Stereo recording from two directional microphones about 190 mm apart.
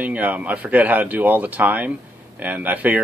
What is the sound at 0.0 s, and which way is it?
Speech, 10° right (ahead or behind).